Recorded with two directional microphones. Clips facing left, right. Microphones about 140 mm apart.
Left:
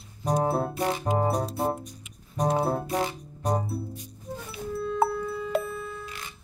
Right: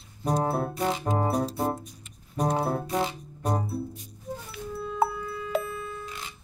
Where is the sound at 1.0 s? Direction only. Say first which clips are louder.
Left 4 dB; 20° left (ahead or behind).